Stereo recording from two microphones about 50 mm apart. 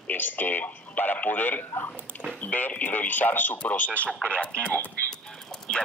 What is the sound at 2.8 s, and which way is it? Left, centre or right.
Speech, left.